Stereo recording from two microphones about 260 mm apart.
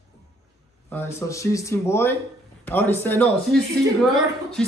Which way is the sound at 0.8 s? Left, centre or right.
Centre.